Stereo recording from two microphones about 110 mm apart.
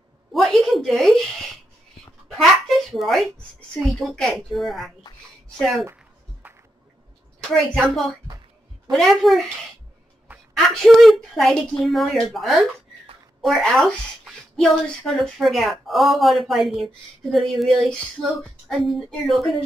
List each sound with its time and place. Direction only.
0.3 s a sound: centre (ahead or behind)
3.8 s a woman's voice: centre (ahead or behind)
6.4 s music: 15° right (ahead or behind)
7.3 s a woman's voice: centre (ahead or behind)
10.5 s a woman's voice: centre (ahead or behind)